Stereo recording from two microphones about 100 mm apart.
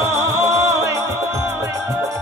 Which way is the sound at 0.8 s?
30° right (ahead or behind).